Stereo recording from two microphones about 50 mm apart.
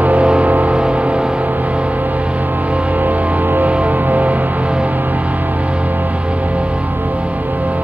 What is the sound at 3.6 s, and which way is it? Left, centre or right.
Music, right.